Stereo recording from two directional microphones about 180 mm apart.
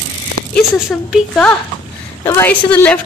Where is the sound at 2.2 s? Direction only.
15° left (ahead or behind).